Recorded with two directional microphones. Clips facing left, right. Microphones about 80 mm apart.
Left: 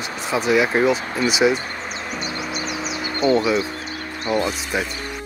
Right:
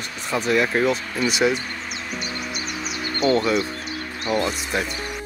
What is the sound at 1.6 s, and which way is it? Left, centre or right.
Insect, left.